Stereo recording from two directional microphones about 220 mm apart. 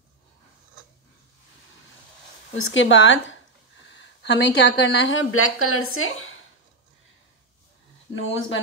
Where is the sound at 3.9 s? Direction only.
55° left (ahead or behind).